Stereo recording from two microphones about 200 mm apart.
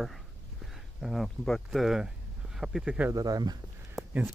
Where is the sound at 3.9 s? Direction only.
10° right (ahead or behind).